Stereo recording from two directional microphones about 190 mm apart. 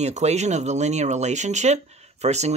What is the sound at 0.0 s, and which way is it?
Speech, 35° right (ahead or behind).